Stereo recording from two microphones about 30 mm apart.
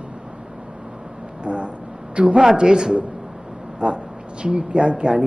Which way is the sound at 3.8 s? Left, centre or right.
Right.